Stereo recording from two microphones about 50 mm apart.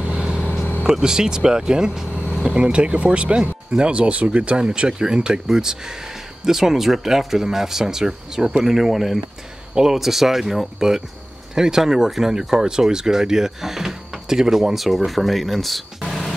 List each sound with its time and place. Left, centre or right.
0.9 s speech: centre
16.1 s music: centre